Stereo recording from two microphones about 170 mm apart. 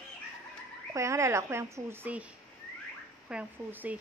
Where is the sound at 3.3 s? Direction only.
10° right (ahead or behind).